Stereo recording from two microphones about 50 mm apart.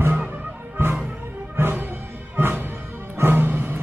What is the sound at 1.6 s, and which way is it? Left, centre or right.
Music, right.